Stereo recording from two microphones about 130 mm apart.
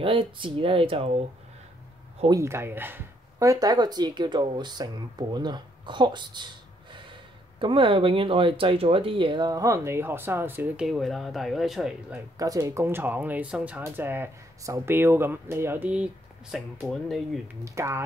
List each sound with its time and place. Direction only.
0.0 s speech: 40° right (ahead or behind)
2.4 s speech: 20° right (ahead or behind)
10.9 s speech: centre (ahead or behind)
12.4 s speech: 25° right (ahead or behind); by 17.4 s centre (ahead or behind)
17.6 s speech: 20° right (ahead or behind)